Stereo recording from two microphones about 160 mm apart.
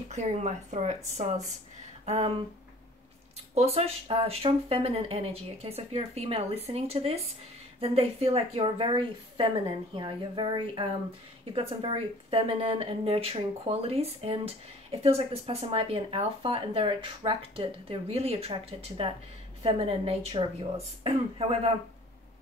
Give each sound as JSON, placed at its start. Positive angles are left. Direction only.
{"t": 0.1, "sound": "speech", "side_deg": -45}
{"t": 3.5, "sound": "speech", "side_deg": -40}